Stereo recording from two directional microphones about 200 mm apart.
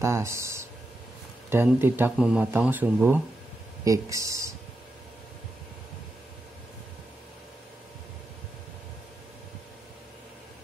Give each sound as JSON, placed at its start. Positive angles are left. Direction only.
{"t": 0.0, "sound": "speech", "side_deg": -15}